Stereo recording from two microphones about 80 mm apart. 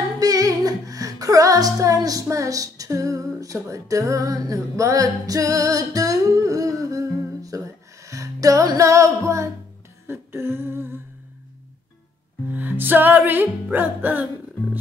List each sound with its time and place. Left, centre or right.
0.2 s music: right
10.0 s humming: right
12.4 s music: right